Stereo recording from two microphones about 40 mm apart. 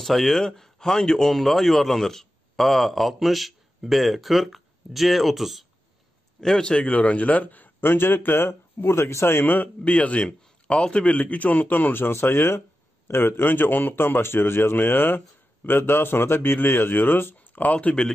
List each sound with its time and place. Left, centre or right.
0.0 s a man's voice: centre
6.4 s a man's voice: centre
6.7 s a man's voice: left
7.8 s a man's voice: left
9.8 s a man's voice: left
13.1 s a man's voice: left
16.5 s speech: left
17.4 s speech: left